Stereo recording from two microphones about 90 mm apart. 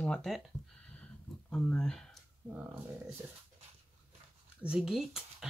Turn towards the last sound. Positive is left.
turn(degrees=-5)  # may be behind; listen again after turning